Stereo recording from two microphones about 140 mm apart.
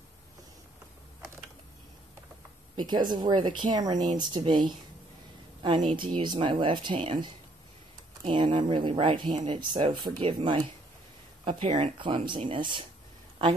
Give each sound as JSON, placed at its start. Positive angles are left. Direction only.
{"t": 2.7, "sound": "speech", "side_deg": -35}
{"t": 8.3, "sound": "speech", "side_deg": -35}